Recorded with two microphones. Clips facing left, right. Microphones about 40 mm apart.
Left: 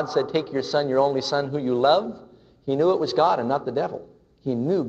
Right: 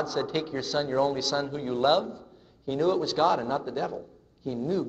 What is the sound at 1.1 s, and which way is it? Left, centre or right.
Speech, centre.